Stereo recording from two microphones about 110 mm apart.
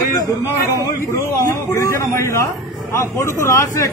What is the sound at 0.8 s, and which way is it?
A man's voice, 25° left (ahead or behind).